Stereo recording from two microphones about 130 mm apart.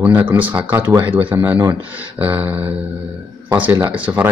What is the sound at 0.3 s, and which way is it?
Speech, 10° right (ahead or behind).